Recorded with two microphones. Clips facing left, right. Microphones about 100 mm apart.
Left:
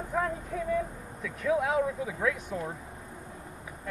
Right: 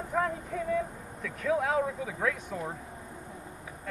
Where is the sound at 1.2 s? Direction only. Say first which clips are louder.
Left 1 dB; 5° left (ahead or behind).